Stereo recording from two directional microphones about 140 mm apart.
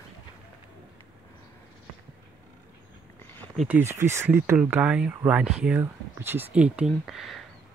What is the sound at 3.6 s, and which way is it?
Speech, 15° right (ahead or behind).